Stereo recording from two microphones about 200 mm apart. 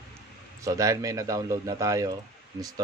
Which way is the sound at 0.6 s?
15° right (ahead or behind).